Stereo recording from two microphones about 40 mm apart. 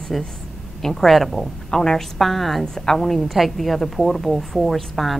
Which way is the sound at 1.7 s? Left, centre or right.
Centre.